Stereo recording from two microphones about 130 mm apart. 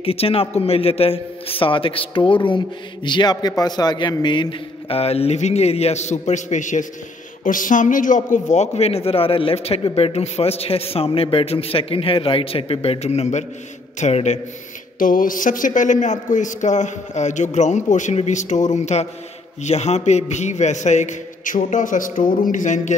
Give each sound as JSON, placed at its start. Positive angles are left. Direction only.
{"t": 0.0, "sound": "a man's voice", "side_deg": 50}
{"t": 7.4, "sound": "a man's voice", "side_deg": 90}
{"t": 15.0, "sound": "a man's voice", "side_deg": 90}
{"t": 22.4, "sound": "a man's voice", "side_deg": 80}